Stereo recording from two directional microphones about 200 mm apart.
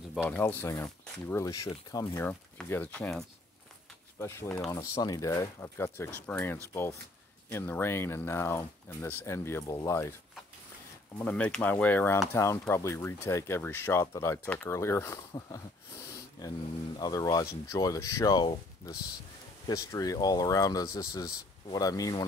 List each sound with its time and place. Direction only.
0.1 s speech: 5° left (ahead or behind)
4.6 s speech: 15° left (ahead or behind)
11.2 s speech: 5° left (ahead or behind)